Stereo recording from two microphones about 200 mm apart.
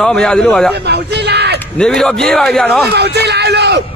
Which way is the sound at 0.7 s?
55° right (ahead or behind).